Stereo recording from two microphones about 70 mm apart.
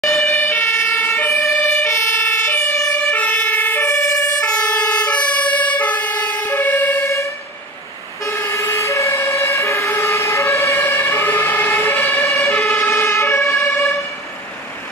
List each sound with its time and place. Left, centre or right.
0.0 s emergency vehicle: centre
0.3 s emergency vehicle: left
1.9 s emergency vehicle: left
2.8 s emergency vehicle: centre
3.1 s emergency vehicle: left
3.9 s emergency vehicle: centre; by 7.1 s left
8.3 s emergency vehicle: left
12.9 s emergency vehicle: left
13.7 s vehicle: left